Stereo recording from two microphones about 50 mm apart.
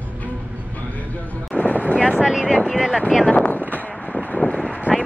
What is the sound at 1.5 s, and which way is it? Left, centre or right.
Vehicle, left.